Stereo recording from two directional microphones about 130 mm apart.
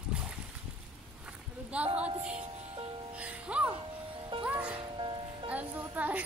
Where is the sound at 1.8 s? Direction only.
50° right (ahead or behind).